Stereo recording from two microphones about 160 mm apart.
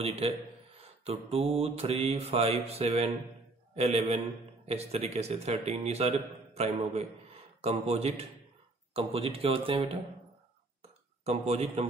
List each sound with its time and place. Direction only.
0.2 s speech: 40° right (ahead or behind)
11.2 s a man's voice: 40° right (ahead or behind)